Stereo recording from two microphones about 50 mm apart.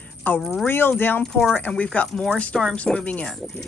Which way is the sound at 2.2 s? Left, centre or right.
Centre.